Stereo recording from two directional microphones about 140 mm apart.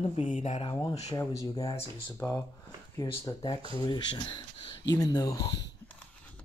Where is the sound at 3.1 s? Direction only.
30° left (ahead or behind).